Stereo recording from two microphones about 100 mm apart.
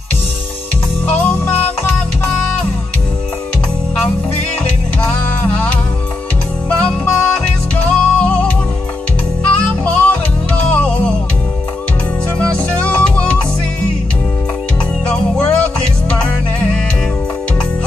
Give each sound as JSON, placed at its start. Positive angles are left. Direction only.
{"t": 1.0, "sound": "music", "side_deg": 15}
{"t": 5.0, "sound": "music", "side_deg": 15}
{"t": 6.8, "sound": "music", "side_deg": 10}
{"t": 12.4, "sound": "music", "side_deg": 10}
{"t": 15.0, "sound": "music", "side_deg": 10}